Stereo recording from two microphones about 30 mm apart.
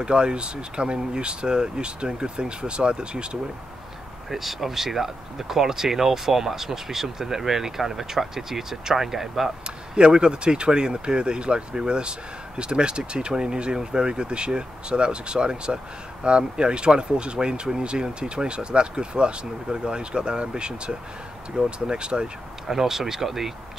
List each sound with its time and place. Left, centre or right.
0.0 s speech: right
4.3 s speech: centre
9.9 s speech: right
22.7 s speech: centre